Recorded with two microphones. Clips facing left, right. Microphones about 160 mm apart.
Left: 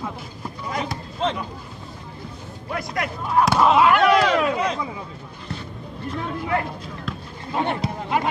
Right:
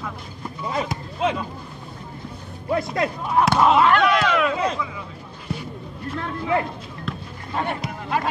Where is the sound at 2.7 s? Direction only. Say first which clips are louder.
Right 5 dB; 30° right (ahead or behind).